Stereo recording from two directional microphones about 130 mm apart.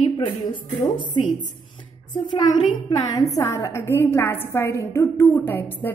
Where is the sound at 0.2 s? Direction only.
40° left (ahead or behind).